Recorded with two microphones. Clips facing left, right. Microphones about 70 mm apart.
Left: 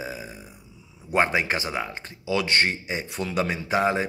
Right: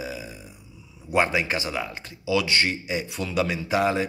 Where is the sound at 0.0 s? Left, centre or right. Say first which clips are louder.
Even; left.